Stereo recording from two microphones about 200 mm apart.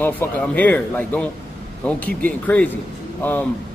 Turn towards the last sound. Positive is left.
turn(degrees=10)  # may be behind; listen again after turning